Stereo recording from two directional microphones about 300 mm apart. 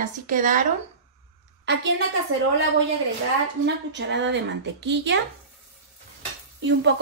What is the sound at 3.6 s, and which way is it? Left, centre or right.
Speech, right.